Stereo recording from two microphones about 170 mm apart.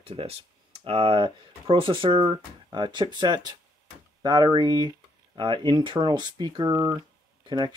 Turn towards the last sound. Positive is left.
turn(degrees=-25)  # may be behind; listen again after turning